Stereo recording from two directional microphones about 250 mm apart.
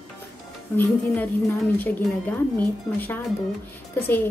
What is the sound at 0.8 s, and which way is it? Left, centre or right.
A woman's voice, centre.